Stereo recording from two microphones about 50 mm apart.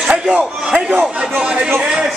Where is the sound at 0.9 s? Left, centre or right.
Right.